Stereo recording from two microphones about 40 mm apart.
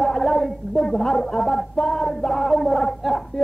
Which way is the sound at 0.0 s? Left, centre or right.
Centre.